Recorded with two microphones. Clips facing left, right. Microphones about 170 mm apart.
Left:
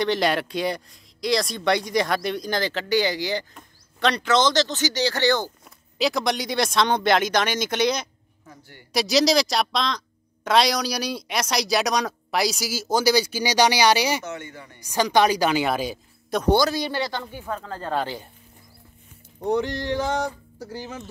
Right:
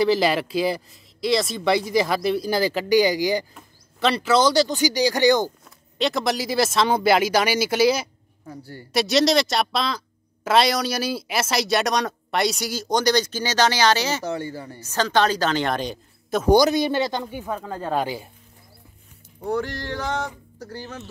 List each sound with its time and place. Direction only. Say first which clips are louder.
0.0 s speech: right 3 dB; 5° right (ahead or behind)
5.9 s speech: even; centre (ahead or behind)
8.5 s speech: right 9 dB; 35° right (ahead or behind)
8.9 s speech: right 1 dB; centre (ahead or behind)
14.2 s speech: right 6 dB; 35° right (ahead or behind)
14.8 s speech: left 1 dB; 15° left (ahead or behind)
16.5 s speech: right 8 dB; 20° right (ahead or behind)
19.4 s speech: left 2 dB; 15° left (ahead or behind)